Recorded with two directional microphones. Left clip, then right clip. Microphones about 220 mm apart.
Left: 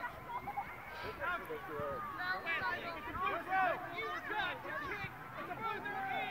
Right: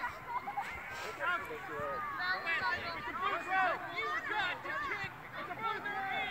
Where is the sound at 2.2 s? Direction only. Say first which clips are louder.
Right 3 dB; 5° left (ahead or behind).